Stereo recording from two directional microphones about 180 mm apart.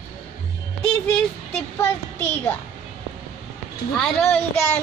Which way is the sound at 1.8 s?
15° left (ahead or behind).